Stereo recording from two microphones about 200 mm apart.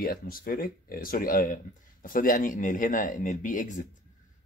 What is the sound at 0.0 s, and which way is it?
Speech, 45° left (ahead or behind).